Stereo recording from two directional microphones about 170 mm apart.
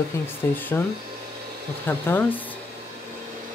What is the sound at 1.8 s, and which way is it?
Speech, 10° left (ahead or behind).